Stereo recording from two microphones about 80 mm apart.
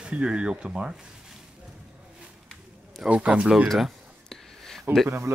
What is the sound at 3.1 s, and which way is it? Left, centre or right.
Speech, centre.